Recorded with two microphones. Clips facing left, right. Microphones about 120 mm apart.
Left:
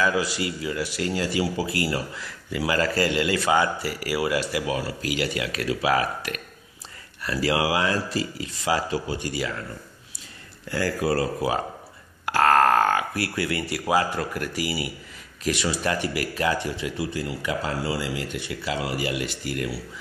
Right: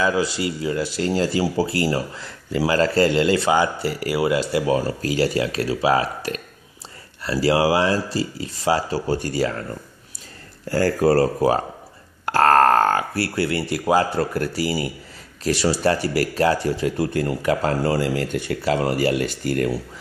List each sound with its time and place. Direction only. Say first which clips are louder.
0.0 s speech: right 3 dB; 30° right (ahead or behind)
10.7 s speech: right 7 dB; 40° right (ahead or behind)